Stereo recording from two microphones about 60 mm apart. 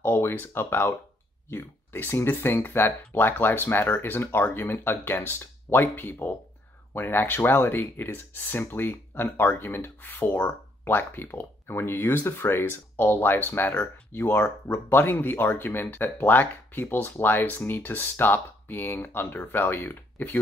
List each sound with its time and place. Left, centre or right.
0.0 s speech: left